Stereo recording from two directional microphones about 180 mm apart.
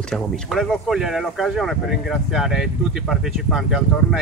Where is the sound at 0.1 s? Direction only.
Centre (ahead or behind).